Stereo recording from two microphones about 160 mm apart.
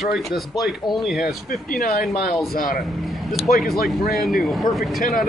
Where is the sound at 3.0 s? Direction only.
Centre (ahead or behind).